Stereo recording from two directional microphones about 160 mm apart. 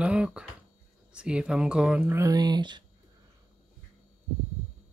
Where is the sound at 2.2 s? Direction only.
25° right (ahead or behind).